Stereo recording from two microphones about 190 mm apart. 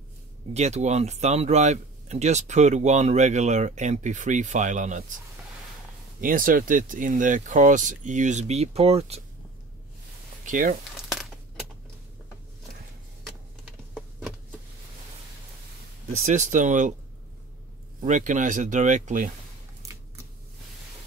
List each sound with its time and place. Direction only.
0.5 s speech: 35° right (ahead or behind)
6.2 s speech: 45° right (ahead or behind)
10.4 s speech: 45° right (ahead or behind)
11.0 s crumpling: centre (ahead or behind)
16.1 s speech: 40° right (ahead or behind)
18.0 s speech: 40° right (ahead or behind)
19.8 s typewriter: 15° right (ahead or behind)